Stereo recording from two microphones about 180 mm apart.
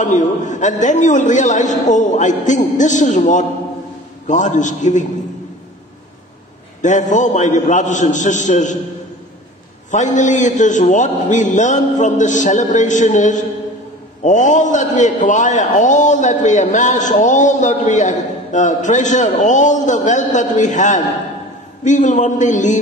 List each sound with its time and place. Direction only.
0.0 s a man's voice: 45° left (ahead or behind)
6.8 s a man's voice: 45° left (ahead or behind)
9.8 s a man's voice: 45° left (ahead or behind)